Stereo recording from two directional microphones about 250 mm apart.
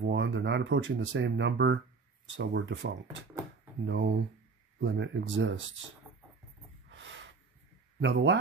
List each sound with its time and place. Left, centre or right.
0.0 s speech: right
6.9 s snort: right
8.0 s speech: right